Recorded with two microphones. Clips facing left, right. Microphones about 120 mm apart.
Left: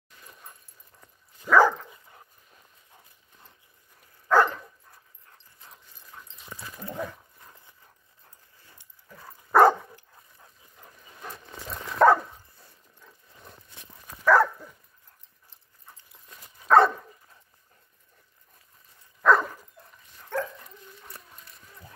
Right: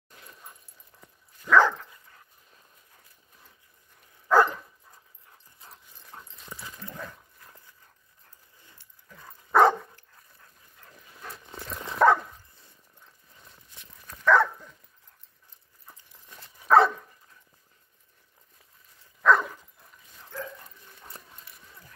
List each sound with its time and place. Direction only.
0.5 s dog: 10° right (ahead or behind)
1.4 s dog: 10° left (ahead or behind)
4.3 s dog: 10° right (ahead or behind)
6.1 s clip-clop: 30° right (ahead or behind)
6.6 s dog: 15° left (ahead or behind)
8.7 s dog: 10° left (ahead or behind)
9.5 s dog: centre (ahead or behind)
9.9 s dog: 15° left (ahead or behind)
11.9 s dog: centre (ahead or behind)
13.5 s clip-clop: 55° left (ahead or behind)
14.0 s dog: 10° left (ahead or behind)
16.6 s dog: centre (ahead or behind)
19.2 s dog: centre (ahead or behind)
20.3 s dog: 75° left (ahead or behind)